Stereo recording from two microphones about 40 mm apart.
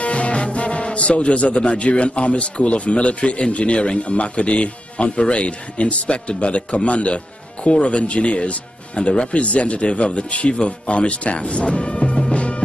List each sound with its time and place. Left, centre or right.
0.0 s music: left
1.8 s speech: left